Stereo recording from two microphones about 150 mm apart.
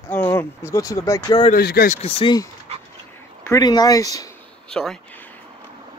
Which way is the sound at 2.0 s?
35° left (ahead or behind).